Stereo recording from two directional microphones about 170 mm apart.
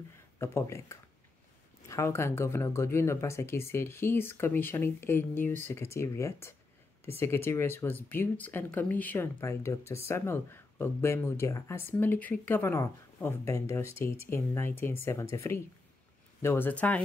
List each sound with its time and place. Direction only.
0.4 s speech: 15° left (ahead or behind)